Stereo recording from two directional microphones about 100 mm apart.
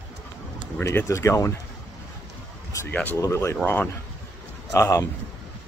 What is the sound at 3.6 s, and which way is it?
Speech, 15° left (ahead or behind).